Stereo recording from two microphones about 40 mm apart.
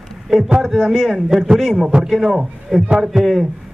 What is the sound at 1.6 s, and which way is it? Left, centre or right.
A man's voice, centre.